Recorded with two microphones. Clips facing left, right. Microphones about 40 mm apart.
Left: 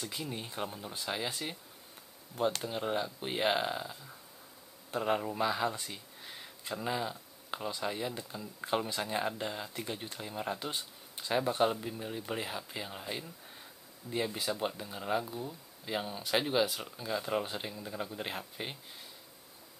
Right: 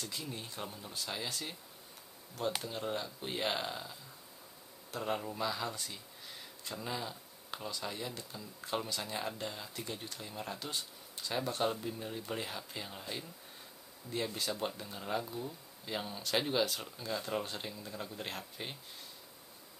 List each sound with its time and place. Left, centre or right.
0.0 s speech: centre
0.3 s speech: left
2.6 s speech: centre